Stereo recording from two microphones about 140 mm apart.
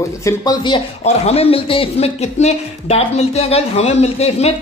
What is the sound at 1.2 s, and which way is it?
Speech, 45° left (ahead or behind).